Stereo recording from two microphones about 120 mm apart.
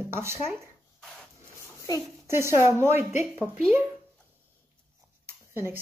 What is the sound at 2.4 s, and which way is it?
Speech, 20° right (ahead or behind).